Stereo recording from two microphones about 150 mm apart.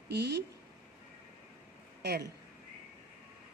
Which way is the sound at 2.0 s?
90° right.